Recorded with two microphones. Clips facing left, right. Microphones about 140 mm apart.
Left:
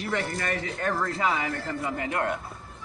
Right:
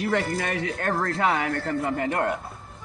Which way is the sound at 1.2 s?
65° right (ahead or behind).